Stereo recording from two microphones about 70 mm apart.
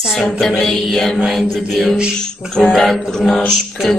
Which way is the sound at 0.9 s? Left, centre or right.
Centre.